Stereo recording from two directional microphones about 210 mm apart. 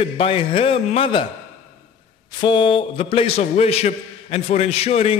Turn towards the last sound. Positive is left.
turn(degrees=30)  # may be behind; listen again after turning